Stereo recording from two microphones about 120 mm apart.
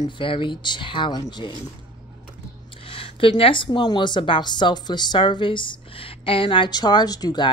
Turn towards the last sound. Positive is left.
turn(degrees=35)  # may be behind; listen again after turning